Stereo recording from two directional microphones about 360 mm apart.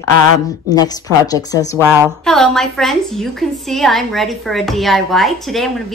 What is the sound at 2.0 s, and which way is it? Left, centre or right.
A woman's voice, centre.